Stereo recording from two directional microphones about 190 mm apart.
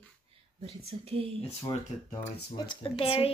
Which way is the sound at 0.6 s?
30° right (ahead or behind).